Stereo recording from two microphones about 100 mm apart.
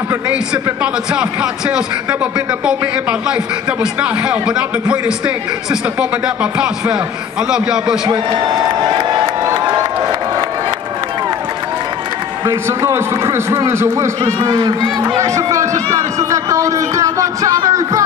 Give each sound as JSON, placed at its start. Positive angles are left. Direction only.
{"t": 1.1, "sound": "a man's voice", "side_deg": -10}
{"t": 8.1, "sound": "a man's voice", "side_deg": -45}
{"t": 9.2, "sound": "crowd", "side_deg": -25}
{"t": 12.4, "sound": "a man's voice", "side_deg": -30}
{"t": 15.1, "sound": "a man's voice", "side_deg": -30}